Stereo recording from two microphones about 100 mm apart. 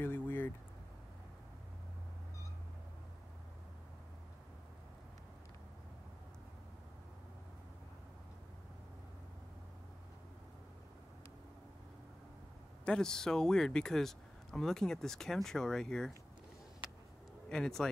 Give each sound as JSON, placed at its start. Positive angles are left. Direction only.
{"t": 0.0, "sound": "a sound", "side_deg": 20}
{"t": 12.8, "sound": "speech", "side_deg": 5}
{"t": 17.5, "sound": "speech", "side_deg": 5}